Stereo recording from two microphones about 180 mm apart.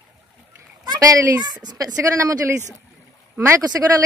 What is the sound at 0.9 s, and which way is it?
A child's voice, 20° right (ahead or behind).